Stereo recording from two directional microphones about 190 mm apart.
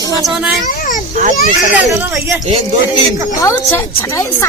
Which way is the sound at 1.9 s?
10° right (ahead or behind).